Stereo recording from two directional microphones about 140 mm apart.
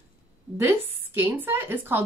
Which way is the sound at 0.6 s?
15° right (ahead or behind).